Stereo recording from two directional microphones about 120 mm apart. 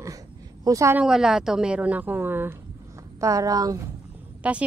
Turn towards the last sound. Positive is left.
turn(degrees=-10)  # may be behind; listen again after turning